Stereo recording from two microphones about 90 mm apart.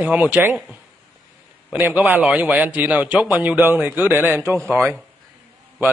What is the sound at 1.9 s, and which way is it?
A man's voice, 20° right (ahead or behind).